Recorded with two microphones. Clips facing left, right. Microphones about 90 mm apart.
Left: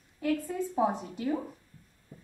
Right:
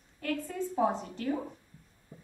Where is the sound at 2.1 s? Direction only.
20° right (ahead or behind).